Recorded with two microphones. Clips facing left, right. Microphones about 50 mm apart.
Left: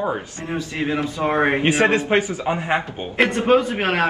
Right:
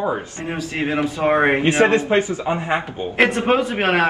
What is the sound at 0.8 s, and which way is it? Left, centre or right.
Speech, right.